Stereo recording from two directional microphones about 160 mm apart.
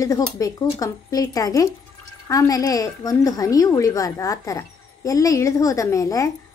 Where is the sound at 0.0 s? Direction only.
20° left (ahead or behind).